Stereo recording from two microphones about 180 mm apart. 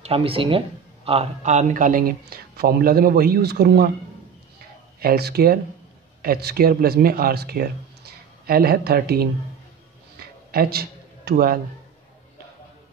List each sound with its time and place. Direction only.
0.0 s speech: 30° right (ahead or behind); by 3.9 s 60° right (ahead or behind)
5.0 s speech: 60° right (ahead or behind)
10.5 s a man's voice: 55° right (ahead or behind)